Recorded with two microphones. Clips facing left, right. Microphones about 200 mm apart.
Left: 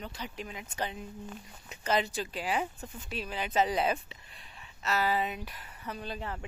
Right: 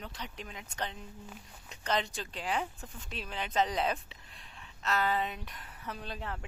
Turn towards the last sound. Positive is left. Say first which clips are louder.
# left 3 dB
turn(degrees=0)  # may be behind; listen again after turning